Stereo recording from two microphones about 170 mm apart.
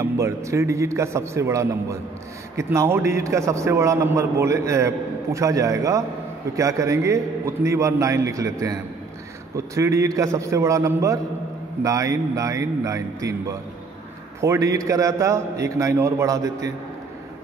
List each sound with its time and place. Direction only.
0.0 s a man's voice: 15° right (ahead or behind)
9.8 s a man's voice: 20° right (ahead or behind)